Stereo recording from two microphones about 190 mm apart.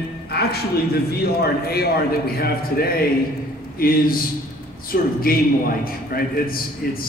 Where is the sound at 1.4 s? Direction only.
55° left (ahead or behind).